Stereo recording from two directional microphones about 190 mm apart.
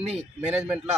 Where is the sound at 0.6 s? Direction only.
5° right (ahead or behind).